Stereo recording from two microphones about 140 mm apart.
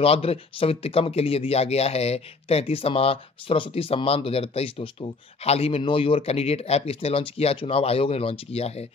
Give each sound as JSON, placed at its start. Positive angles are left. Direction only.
{"t": 0.0, "sound": "speech", "side_deg": 45}